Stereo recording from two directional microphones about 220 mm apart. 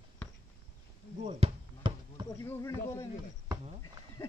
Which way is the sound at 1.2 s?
25° right (ahead or behind).